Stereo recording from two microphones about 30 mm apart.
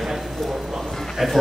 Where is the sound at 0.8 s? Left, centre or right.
Centre.